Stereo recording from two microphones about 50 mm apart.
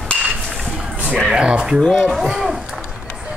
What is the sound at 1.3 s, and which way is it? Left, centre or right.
Speech, centre.